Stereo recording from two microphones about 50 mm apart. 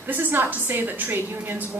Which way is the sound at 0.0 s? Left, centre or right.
Right.